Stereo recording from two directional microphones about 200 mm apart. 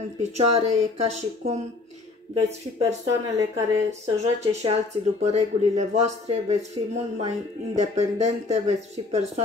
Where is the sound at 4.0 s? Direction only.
35° right (ahead or behind).